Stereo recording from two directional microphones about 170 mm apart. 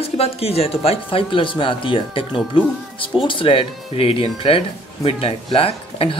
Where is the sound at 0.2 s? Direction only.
35° left (ahead or behind).